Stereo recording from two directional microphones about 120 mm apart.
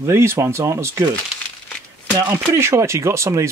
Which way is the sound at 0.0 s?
20° right (ahead or behind).